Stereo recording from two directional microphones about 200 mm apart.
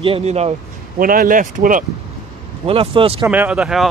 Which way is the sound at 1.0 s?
45° right (ahead or behind).